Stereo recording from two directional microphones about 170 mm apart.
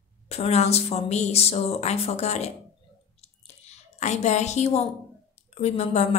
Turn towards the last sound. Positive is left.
turn(degrees=40)  # may be behind; listen again after turning